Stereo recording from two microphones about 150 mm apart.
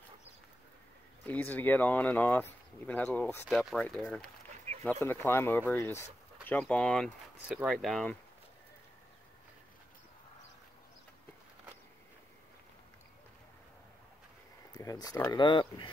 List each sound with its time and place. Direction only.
1.2 s speech: 10° left (ahead or behind)
3.4 s speech: centre (ahead or behind)
4.7 s a sound: 50° right (ahead or behind)
5.0 s speech: 15° left (ahead or behind)
14.7 s speech: 25° left (ahead or behind)